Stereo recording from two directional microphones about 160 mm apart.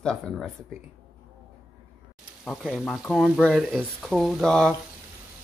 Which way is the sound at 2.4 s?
Centre (ahead or behind).